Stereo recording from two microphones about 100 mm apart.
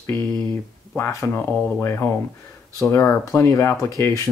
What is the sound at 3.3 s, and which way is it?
Speech, 30° left (ahead or behind).